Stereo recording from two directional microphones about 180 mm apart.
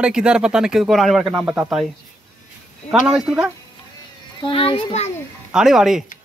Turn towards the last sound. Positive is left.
turn(degrees=0)  # may be behind; listen again after turning